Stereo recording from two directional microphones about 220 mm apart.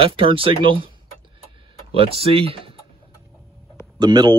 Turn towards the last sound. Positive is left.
turn(degrees=-20)  # may be behind; listen again after turning